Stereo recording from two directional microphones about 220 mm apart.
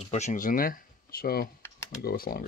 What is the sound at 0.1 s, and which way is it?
Speech, 35° left (ahead or behind).